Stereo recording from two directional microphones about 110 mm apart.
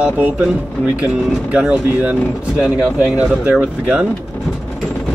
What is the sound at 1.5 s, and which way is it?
Speech, 10° right (ahead or behind).